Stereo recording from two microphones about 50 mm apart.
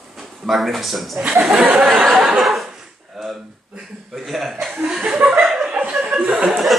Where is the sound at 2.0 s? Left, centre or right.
Centre.